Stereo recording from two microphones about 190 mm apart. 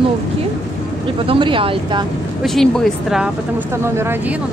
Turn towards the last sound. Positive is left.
turn(degrees=0)  # may be behind; listen again after turning